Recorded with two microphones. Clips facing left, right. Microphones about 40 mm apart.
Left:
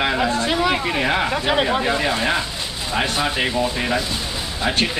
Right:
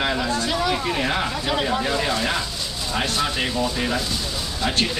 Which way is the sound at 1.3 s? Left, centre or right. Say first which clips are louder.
Left 4 dB; left.